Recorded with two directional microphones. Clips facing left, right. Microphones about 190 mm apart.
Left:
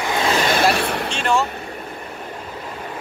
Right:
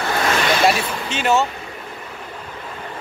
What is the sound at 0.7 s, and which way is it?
Speech, 65° left (ahead or behind).